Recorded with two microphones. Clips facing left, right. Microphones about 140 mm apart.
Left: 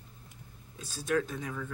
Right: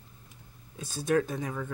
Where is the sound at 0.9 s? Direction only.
45° right (ahead or behind).